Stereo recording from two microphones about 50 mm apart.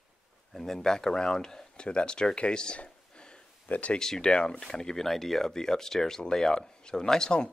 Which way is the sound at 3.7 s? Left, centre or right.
Left.